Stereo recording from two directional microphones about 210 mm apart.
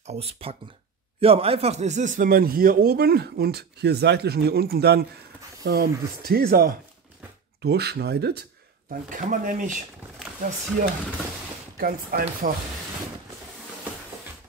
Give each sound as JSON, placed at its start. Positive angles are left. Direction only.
{"t": 0.0, "sound": "speech", "side_deg": -30}
{"t": 9.1, "sound": "speech", "side_deg": -40}
{"t": 11.8, "sound": "speech", "side_deg": -45}